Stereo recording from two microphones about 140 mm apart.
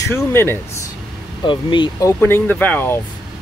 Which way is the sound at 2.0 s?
15° left (ahead or behind).